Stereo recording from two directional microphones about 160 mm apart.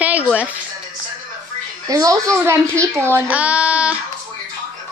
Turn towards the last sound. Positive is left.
turn(degrees=-10)  # may be behind; listen again after turning